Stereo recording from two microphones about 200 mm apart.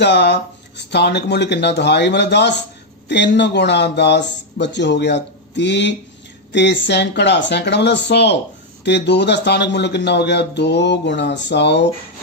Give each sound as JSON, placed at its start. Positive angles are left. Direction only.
{"t": 0.0, "sound": "speech", "side_deg": 60}